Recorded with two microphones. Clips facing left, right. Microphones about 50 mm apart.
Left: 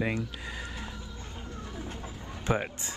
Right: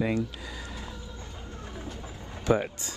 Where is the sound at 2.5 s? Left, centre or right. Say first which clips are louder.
Right 4 dB; left.